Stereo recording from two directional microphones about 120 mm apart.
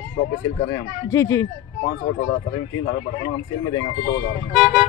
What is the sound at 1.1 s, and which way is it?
Speech, 25° left (ahead or behind).